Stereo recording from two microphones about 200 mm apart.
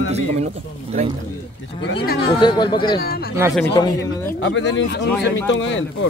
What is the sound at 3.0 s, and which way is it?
Speech, 50° left (ahead or behind).